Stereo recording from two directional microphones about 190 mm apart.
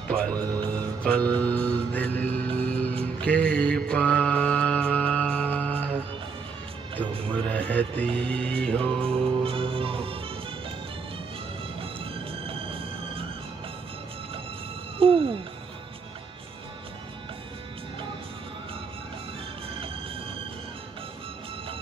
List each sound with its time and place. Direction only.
0.1 s speech: 5° left (ahead or behind)
0.4 s speech: 20° right (ahead or behind)
0.7 s music: 5° left (ahead or behind)
3.2 s mantra: 5° left (ahead or behind)
7.4 s music: 5° left (ahead or behind)
9.0 s music: 30° right (ahead or behind)
11.8 s music: 30° right (ahead or behind)
15.0 s music: 30° right (ahead or behind)